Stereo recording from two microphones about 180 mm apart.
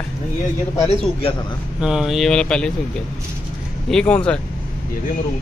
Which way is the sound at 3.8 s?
5° left (ahead or behind).